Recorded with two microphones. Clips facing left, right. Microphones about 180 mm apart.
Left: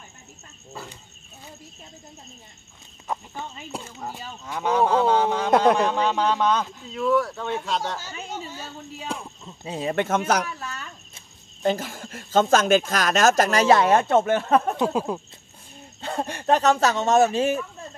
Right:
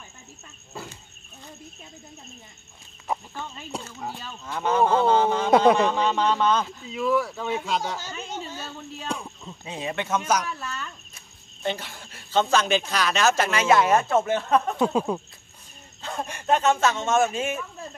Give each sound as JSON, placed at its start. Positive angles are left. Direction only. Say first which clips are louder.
{"t": 4.1, "sound": "cattle", "louder": "even", "side_deg": 15}
{"t": 4.6, "sound": "speech", "louder": "even", "side_deg": 0}
{"t": 6.8, "sound": "speech", "louder": "left 2 dB", "side_deg": -5}
{"t": 9.7, "sound": "speech", "louder": "left 4 dB", "side_deg": 40}
{"t": 11.6, "sound": "speech", "louder": "left 6 dB", "side_deg": 45}
{"t": 14.8, "sound": "speech", "louder": "right 1 dB", "side_deg": 5}
{"t": 16.0, "sound": "speech", "louder": "left 4 dB", "side_deg": 30}